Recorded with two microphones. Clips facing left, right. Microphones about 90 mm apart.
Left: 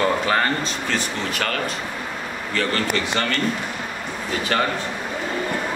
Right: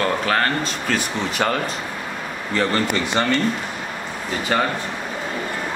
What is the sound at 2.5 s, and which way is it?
Speech, 20° right (ahead or behind).